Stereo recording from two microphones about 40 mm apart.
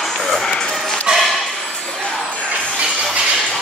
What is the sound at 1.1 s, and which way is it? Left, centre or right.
Bow-wow, right.